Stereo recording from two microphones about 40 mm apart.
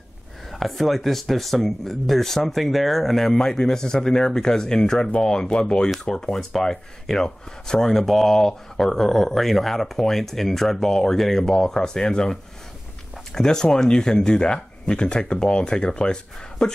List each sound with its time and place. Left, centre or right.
0.5 s speech: centre; by 16.7 s left